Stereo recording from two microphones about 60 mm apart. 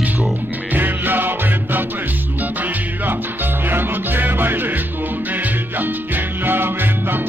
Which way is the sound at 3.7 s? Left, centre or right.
Right.